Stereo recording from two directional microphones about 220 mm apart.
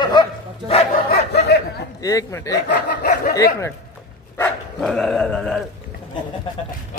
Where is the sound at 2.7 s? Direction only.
40° left (ahead or behind).